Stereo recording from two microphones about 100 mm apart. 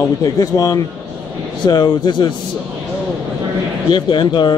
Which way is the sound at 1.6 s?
45° left (ahead or behind).